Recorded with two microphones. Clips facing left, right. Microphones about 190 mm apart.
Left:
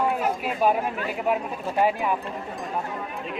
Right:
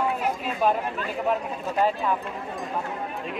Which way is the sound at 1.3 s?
10° left (ahead or behind).